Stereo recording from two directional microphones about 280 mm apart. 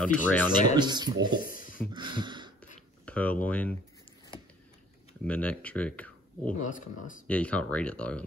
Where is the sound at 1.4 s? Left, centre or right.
Left.